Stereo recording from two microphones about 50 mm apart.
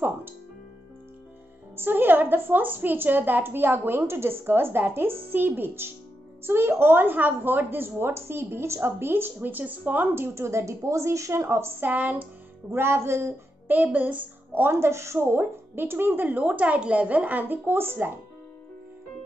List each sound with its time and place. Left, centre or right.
1.8 s a woman's voice: right
10.3 s a woman's voice: right
11.8 s speech: right
12.7 s speech: right
13.8 s a child's voice: right
14.5 s a woman's voice: right